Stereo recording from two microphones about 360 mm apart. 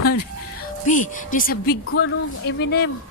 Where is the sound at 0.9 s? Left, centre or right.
Left.